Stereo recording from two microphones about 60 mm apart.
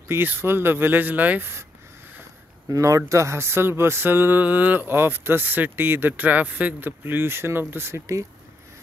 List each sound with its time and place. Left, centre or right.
0.1 s speech: right
2.7 s speech: right
3.1 s speech: right